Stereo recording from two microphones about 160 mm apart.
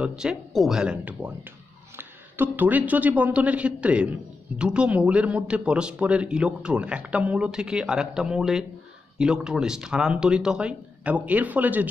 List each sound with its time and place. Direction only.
0.0 s a man's voice: 5° right (ahead or behind)